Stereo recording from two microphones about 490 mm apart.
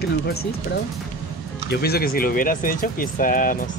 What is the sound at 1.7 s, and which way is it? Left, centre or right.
Speech, centre.